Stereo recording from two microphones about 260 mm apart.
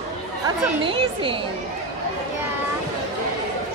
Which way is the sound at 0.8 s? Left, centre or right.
Centre.